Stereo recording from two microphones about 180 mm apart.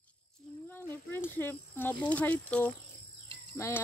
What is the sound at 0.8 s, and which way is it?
Speech, 10° left (ahead or behind).